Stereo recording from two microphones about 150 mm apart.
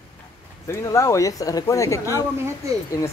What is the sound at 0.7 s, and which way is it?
Speech, 20° left (ahead or behind).